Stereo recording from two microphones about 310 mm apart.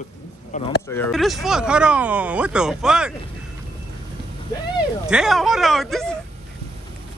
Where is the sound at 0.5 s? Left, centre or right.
Left.